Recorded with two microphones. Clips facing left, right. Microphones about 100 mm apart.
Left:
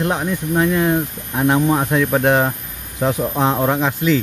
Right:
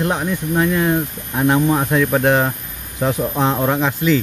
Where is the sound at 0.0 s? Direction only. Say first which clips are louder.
Even; 5° left (ahead or behind).